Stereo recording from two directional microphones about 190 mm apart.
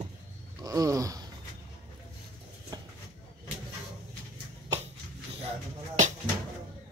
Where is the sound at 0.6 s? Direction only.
20° right (ahead or behind).